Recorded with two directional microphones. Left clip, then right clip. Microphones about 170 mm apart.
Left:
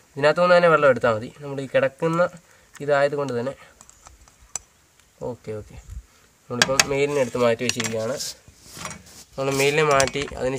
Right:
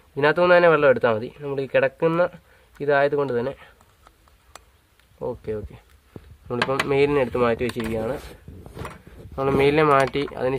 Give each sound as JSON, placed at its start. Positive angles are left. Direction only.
{"t": 0.1, "sound": "a man's voice", "side_deg": -30}
{"t": 5.2, "sound": "speech", "side_deg": -35}
{"t": 6.4, "sound": "mechanisms", "side_deg": -40}
{"t": 9.3, "sound": "a man's voice", "side_deg": -30}